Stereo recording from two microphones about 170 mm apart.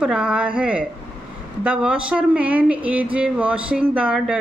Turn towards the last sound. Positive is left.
turn(degrees=-5)  # may be behind; listen again after turning